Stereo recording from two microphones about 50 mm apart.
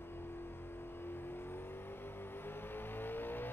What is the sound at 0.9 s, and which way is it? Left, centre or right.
Vehicle, left.